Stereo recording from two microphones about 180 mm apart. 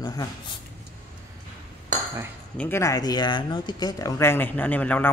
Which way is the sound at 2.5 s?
15° left (ahead or behind).